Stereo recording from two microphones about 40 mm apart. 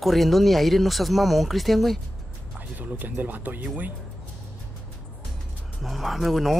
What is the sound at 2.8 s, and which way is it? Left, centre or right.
Speech, right.